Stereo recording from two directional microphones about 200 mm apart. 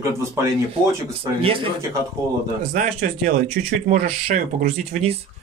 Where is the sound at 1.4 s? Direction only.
25° right (ahead or behind).